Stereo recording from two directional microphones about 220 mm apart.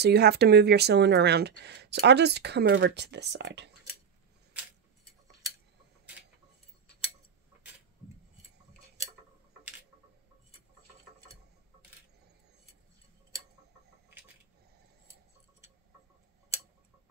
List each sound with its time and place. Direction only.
0.0 s speech: 45° right (ahead or behind)